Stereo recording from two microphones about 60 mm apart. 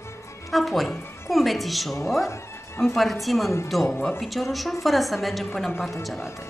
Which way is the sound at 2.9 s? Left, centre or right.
Centre.